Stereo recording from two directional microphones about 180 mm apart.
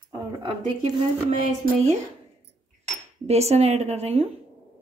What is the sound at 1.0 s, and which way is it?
Speech, 35° right (ahead or behind).